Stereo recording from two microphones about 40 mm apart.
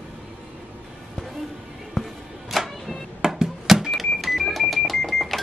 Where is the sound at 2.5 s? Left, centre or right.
Centre.